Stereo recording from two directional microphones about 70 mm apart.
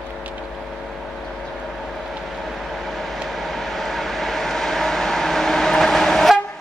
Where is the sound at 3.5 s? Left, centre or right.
Centre.